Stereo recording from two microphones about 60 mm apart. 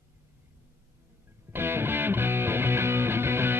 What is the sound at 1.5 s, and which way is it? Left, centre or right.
Music, right.